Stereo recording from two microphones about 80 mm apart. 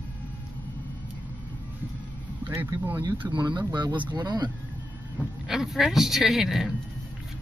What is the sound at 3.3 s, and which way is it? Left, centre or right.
Speech, right.